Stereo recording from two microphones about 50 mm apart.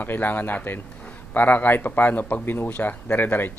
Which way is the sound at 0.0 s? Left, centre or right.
Left.